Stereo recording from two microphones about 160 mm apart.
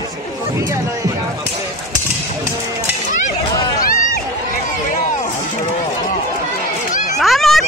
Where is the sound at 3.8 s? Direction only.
60° left (ahead or behind).